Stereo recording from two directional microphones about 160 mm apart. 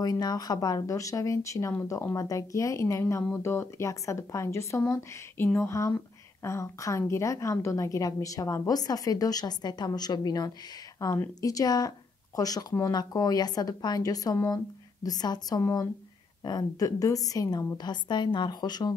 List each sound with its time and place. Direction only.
0.0 s speech: 25° left (ahead or behind)